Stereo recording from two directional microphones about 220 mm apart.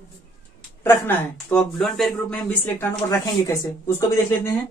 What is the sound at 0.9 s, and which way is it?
Speech, 10° left (ahead or behind).